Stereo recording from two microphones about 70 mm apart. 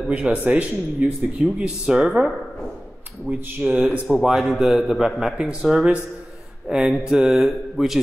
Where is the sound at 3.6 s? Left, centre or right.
Right.